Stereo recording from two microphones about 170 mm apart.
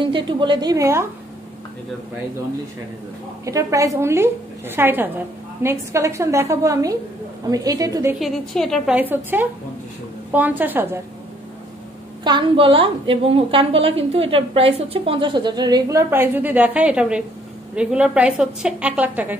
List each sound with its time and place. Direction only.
0.0 s a woman's voice: 30° right (ahead or behind)
3.4 s a woman's voice: 20° right (ahead or behind)
8.2 s a woman's voice: centre (ahead or behind)
8.9 s a woman's voice: 10° right (ahead or behind)
12.2 s a woman's voice: 25° right (ahead or behind); by 19.3 s 10° right (ahead or behind)